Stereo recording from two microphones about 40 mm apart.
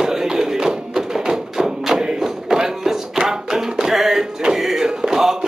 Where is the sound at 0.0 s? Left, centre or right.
Centre.